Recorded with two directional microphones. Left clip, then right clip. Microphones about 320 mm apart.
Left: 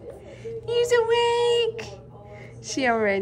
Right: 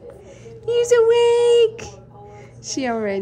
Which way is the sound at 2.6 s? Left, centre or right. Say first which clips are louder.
Left 1 dB; centre.